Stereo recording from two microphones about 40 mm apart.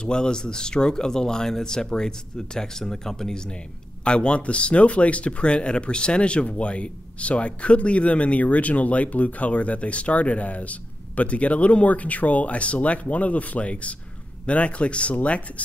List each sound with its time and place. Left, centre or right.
0.0 s speech: left